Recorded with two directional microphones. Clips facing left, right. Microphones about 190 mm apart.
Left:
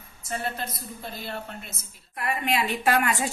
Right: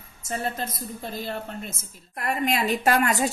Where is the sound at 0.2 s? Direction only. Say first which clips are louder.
Right 2 dB; 40° right (ahead or behind).